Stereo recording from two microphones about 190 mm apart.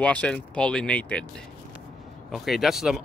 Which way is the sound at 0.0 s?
5° left (ahead or behind).